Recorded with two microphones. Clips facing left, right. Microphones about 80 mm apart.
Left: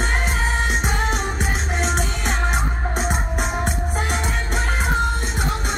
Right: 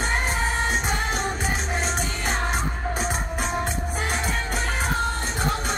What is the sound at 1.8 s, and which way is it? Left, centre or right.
Music, left.